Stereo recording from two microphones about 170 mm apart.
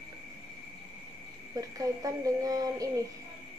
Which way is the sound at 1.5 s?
20° right (ahead or behind).